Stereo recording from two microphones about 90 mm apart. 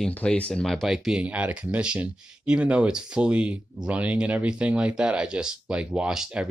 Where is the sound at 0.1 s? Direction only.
15° left (ahead or behind).